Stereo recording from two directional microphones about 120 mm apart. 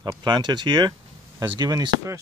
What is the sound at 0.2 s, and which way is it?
Speech, 35° right (ahead or behind).